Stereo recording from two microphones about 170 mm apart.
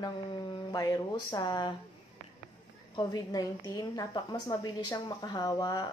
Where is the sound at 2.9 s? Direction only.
25° left (ahead or behind).